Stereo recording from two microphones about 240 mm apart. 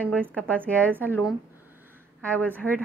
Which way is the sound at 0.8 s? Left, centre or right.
Centre.